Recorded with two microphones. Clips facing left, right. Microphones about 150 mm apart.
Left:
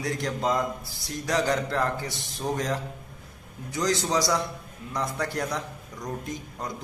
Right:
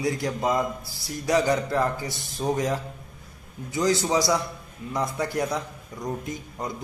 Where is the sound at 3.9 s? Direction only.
10° right (ahead or behind).